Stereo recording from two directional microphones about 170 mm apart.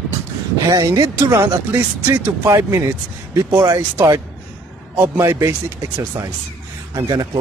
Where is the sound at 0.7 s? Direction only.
20° right (ahead or behind).